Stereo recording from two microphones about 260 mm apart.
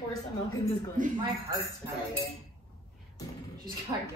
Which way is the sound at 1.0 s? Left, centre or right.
Right.